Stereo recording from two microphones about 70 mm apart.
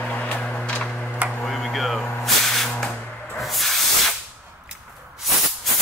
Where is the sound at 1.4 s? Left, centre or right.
Centre.